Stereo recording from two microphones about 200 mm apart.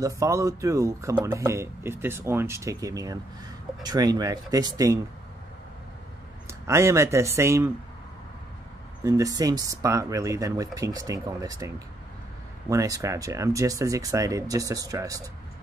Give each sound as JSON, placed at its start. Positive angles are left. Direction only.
{"t": 0.0, "sound": "speech", "side_deg": -15}
{"t": 6.7, "sound": "speech", "side_deg": -15}
{"t": 9.0, "sound": "speech", "side_deg": -15}